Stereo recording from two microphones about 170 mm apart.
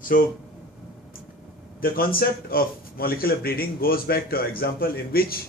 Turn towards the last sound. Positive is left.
turn(degrees=60)  # may be behind; listen again after turning